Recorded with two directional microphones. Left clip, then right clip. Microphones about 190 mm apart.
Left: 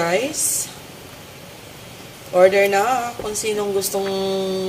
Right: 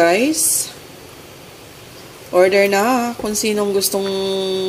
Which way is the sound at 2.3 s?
55° right (ahead or behind).